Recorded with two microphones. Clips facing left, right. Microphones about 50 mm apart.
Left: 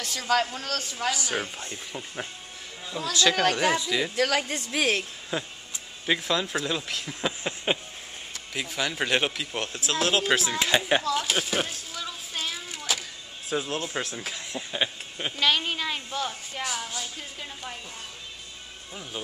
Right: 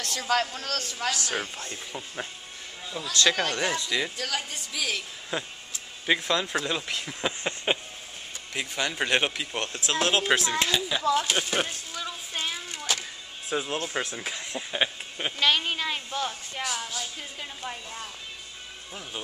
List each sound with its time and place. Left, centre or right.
0.0 s speech: centre
3.4 s speech: centre
4.2 s a woman's voice: left
5.3 s speech: centre
10.8 s speech: left
11.1 s a sound: centre
13.5 s speech: centre